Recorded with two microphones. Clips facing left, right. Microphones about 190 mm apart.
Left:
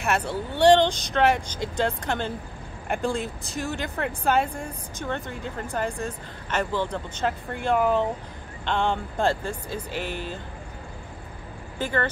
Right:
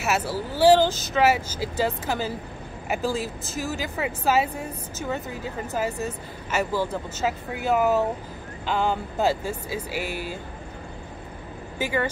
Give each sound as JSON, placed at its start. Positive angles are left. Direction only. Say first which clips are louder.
{"t": 0.0, "sound": "speech", "louder": "even", "side_deg": -5}
{"t": 11.8, "sound": "speech", "louder": "right 1 dB", "side_deg": -10}